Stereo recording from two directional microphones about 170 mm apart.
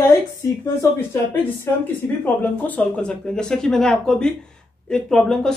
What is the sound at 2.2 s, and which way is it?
Speech, 10° left (ahead or behind).